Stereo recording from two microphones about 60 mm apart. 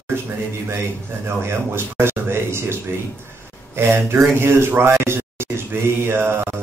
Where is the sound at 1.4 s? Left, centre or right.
Right.